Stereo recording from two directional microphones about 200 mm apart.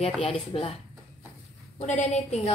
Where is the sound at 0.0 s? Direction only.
25° left (ahead or behind).